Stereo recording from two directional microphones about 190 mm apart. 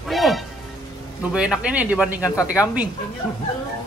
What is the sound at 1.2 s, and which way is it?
Speech, 5° right (ahead or behind).